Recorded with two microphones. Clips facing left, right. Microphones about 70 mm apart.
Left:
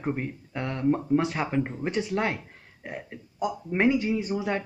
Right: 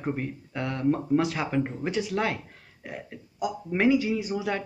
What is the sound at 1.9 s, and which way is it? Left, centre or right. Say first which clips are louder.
Speech: even; left.